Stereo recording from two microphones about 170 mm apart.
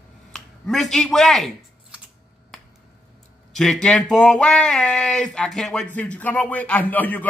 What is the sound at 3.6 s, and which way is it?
Speech, 5° left (ahead or behind).